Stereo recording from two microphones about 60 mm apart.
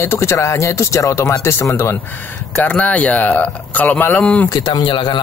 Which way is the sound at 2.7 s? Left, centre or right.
Left.